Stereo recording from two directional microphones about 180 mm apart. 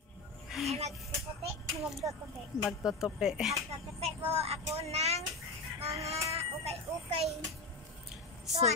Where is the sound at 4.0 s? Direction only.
35° right (ahead or behind).